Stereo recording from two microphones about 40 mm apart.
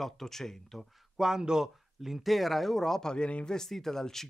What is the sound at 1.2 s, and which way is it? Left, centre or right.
Speech, centre.